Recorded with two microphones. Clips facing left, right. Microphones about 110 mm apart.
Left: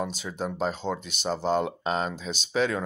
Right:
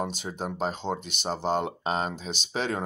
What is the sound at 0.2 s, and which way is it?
Speech, 45° right (ahead or behind).